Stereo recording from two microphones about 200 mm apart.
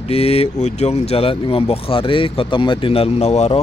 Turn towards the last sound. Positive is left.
turn(degrees=30)  # may be behind; listen again after turning